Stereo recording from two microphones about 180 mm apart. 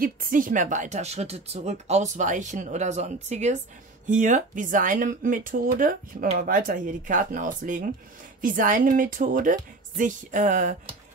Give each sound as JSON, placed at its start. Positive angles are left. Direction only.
{"t": 0.0, "sound": "speech", "side_deg": -50}